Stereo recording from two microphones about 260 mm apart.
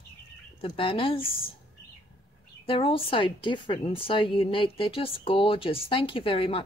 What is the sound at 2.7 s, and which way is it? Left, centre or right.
A woman's voice, left.